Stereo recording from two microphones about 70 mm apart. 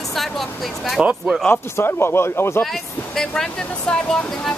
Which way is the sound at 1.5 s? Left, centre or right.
Left.